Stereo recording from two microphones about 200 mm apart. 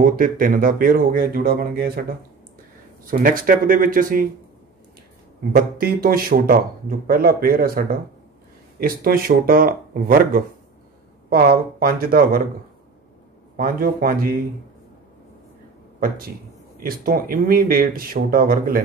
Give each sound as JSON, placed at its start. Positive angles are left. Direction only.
{"t": 0.0, "sound": "speech", "side_deg": -45}
{"t": 3.1, "sound": "speech", "side_deg": -45}
{"t": 5.5, "sound": "speech", "side_deg": -50}
{"t": 13.6, "sound": "speech", "side_deg": -45}
{"t": 16.8, "sound": "speech", "side_deg": -45}